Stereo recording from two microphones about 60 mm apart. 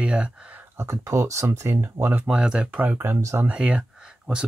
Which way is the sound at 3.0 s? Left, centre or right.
Right.